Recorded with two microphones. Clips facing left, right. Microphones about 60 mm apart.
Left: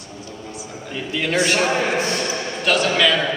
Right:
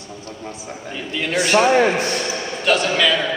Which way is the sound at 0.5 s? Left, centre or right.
Right.